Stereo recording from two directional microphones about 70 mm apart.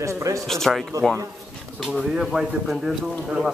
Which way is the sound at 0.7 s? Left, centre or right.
Centre.